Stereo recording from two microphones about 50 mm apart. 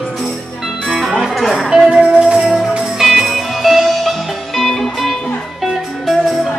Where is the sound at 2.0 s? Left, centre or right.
Centre.